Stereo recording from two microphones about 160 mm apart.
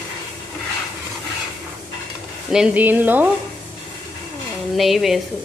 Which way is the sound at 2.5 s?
5° right (ahead or behind).